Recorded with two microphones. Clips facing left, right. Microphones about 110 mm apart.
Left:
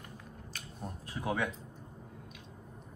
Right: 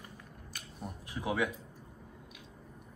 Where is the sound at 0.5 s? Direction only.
10° right (ahead or behind).